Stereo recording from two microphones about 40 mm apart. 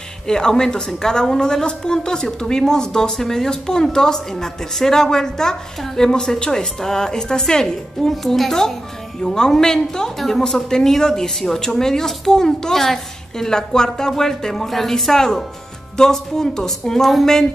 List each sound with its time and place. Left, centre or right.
0.3 s speech: centre
8.1 s speech: centre